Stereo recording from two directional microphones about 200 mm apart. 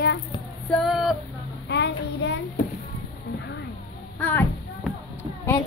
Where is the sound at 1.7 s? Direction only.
60° left (ahead or behind).